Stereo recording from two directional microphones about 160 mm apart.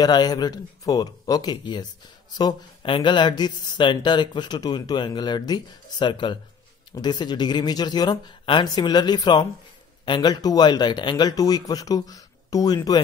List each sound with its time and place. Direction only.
0.0 s speech: 25° left (ahead or behind)